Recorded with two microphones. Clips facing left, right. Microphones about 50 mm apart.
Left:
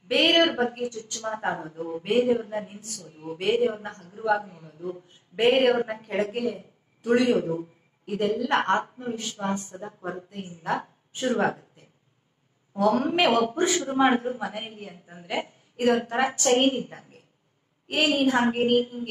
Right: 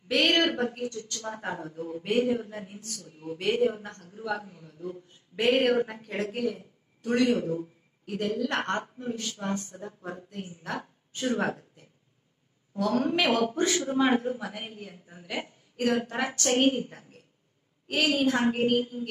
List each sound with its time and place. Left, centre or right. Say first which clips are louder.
0.1 s a sound: left 3 dB; centre
0.4 s a woman's voice: left 4 dB; left
4.6 s a sound: left 3 dB; centre
4.9 s speech: left 3 dB; left
7.3 s a man's voice: left 4 dB; left
8.0 s a woman's voice: left 4 dB; left
12.7 s a woman's voice: left 4 dB; left